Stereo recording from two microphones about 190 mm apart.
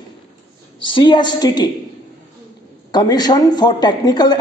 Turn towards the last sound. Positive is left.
turn(degrees=20)  # may be behind; listen again after turning